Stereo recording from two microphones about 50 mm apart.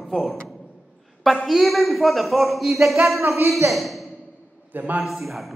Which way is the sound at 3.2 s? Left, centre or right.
Right.